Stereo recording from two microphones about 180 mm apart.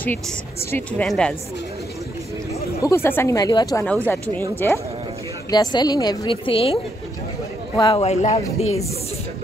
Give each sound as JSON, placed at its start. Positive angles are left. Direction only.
{"t": 0.7, "sound": "a woman's voice", "side_deg": 10}
{"t": 2.8, "sound": "a woman's voice", "side_deg": 15}